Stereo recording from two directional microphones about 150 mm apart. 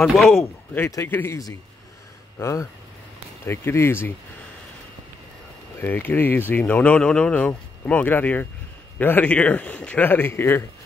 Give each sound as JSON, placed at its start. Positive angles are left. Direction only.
{"t": 0.0, "sound": "speech", "side_deg": 0}
{"t": 0.7, "sound": "speech", "side_deg": 15}
{"t": 5.8, "sound": "speech", "side_deg": 10}